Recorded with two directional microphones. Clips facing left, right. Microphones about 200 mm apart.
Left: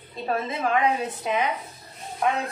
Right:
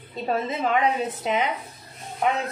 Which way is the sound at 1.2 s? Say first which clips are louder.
Right 1 dB; 25° right (ahead or behind).